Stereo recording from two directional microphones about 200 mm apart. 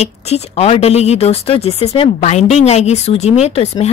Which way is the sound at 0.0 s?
30° left (ahead or behind).